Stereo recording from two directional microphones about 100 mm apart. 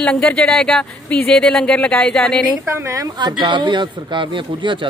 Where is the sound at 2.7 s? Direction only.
30° right (ahead or behind).